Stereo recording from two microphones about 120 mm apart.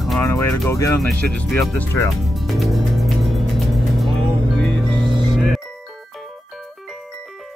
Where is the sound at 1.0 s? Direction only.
Centre (ahead or behind).